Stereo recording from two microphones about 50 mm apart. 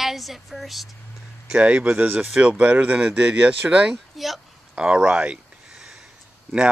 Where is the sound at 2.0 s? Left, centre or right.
Right.